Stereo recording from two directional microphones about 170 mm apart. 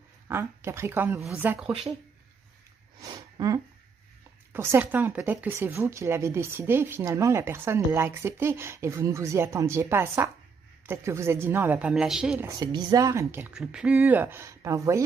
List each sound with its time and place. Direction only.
0.3 s speech: 15° right (ahead or behind)
1.7 s speech: 35° right (ahead or behind)
3.0 s sniff: 20° right (ahead or behind)
4.5 s speech: 15° right (ahead or behind)
12.4 s speech: 20° right (ahead or behind)